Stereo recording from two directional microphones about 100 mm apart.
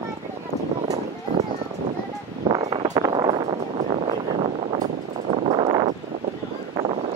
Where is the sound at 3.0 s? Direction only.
50° right (ahead or behind).